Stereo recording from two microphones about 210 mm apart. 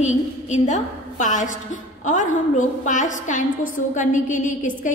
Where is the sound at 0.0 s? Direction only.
35° left (ahead or behind).